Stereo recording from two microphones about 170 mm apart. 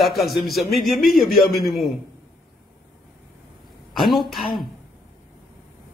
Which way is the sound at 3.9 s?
Centre (ahead or behind).